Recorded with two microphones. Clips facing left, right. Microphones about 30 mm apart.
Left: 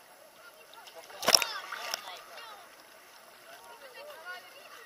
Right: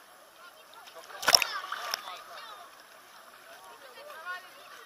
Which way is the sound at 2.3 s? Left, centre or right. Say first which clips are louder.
Right 2 dB; right.